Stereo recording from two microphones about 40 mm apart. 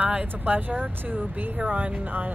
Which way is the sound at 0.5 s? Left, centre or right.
Right.